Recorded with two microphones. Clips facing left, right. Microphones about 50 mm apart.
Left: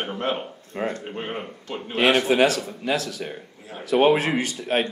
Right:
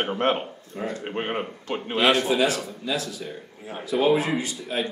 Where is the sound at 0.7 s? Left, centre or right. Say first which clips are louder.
Left 4 dB; left.